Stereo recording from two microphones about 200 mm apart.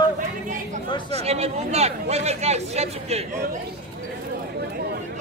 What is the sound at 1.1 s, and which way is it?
Chatter, 30° right (ahead or behind).